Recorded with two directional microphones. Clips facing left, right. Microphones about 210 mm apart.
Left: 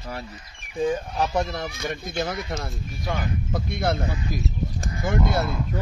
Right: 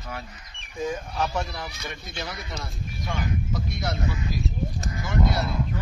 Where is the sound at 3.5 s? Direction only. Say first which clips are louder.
Left 5 dB; 55° left (ahead or behind).